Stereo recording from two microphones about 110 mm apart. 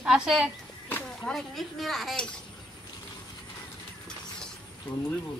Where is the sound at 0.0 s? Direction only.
5° right (ahead or behind).